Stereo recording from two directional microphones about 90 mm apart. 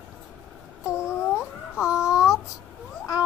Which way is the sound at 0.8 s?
10° right (ahead or behind).